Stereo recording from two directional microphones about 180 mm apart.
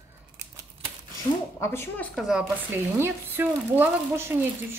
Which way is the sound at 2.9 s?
15° right (ahead or behind).